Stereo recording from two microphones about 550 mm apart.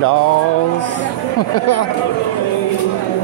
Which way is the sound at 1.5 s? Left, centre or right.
Left.